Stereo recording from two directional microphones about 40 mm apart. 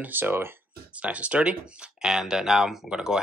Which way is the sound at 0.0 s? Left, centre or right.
Right.